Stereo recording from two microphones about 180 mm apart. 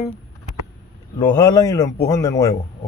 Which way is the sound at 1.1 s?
20° left (ahead or behind).